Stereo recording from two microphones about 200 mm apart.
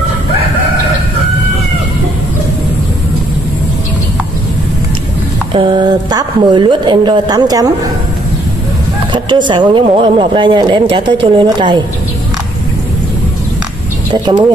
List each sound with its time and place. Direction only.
5.5 s speech: 25° right (ahead or behind)
9.1 s speech: 25° right (ahead or behind)